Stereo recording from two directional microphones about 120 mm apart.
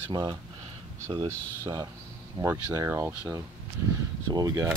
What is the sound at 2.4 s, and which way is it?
Speech, 25° right (ahead or behind).